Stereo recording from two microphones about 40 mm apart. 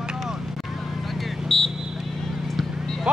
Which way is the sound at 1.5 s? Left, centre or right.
Centre.